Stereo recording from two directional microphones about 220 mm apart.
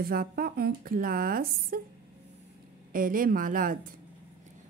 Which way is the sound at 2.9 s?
40° right (ahead or behind).